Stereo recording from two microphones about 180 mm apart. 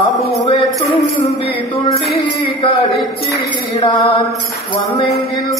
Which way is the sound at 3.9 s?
30° left (ahead or behind).